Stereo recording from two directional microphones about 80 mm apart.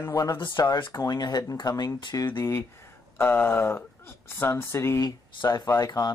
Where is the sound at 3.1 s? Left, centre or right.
Left.